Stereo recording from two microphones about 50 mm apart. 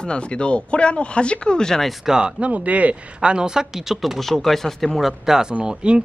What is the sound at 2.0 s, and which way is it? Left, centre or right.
Speech, centre.